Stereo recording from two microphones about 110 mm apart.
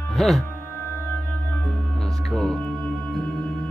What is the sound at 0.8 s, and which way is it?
Music, 20° left (ahead or behind).